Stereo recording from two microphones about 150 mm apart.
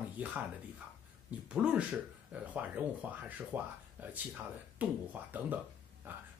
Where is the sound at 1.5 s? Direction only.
5° right (ahead or behind).